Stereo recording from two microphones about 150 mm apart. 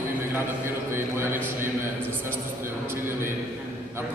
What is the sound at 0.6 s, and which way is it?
Speech, 15° right (ahead or behind).